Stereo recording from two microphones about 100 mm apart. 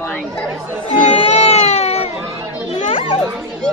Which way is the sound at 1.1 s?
90° left.